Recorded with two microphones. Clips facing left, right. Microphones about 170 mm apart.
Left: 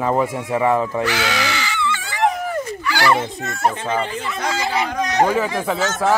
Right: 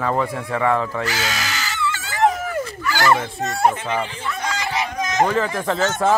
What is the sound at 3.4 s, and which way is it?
Speech, 40° right (ahead or behind).